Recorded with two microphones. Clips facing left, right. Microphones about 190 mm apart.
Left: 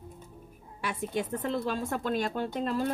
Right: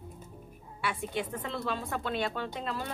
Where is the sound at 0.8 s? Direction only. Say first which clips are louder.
Left 2 dB; 45° left (ahead or behind).